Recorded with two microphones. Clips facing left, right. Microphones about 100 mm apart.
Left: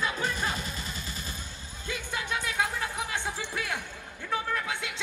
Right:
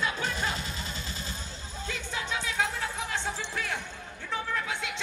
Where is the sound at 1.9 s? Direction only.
15° left (ahead or behind).